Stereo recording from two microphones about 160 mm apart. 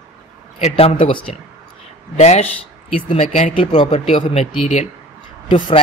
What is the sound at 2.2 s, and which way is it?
A man's voice, 45° left (ahead or behind).